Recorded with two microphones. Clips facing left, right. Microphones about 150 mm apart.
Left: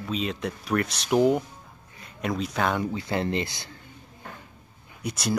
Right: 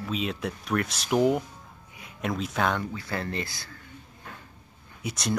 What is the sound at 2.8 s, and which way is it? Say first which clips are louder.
Speech: left 5 dB; 20° left (ahead or behind).